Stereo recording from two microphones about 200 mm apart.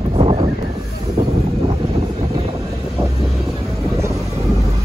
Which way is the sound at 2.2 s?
30° right (ahead or behind).